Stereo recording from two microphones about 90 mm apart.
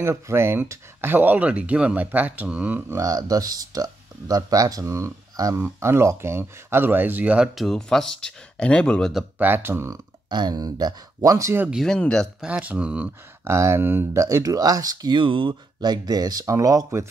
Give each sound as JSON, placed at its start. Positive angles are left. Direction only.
{"t": 0.0, "sound": "speech", "side_deg": -30}
{"t": 3.0, "sound": "speech", "side_deg": -40}
{"t": 7.5, "sound": "speech", "side_deg": 5}
{"t": 9.4, "sound": "speech", "side_deg": -25}
{"t": 10.3, "sound": "speech", "side_deg": -50}
{"t": 11.8, "sound": "speech", "side_deg": 5}
{"t": 12.4, "sound": "speech", "side_deg": -15}
{"t": 13.4, "sound": "speech", "side_deg": -30}
{"t": 14.2, "sound": "speech", "side_deg": -40}
{"t": 15.1, "sound": "speech", "side_deg": -70}
{"t": 15.9, "sound": "speech", "side_deg": -45}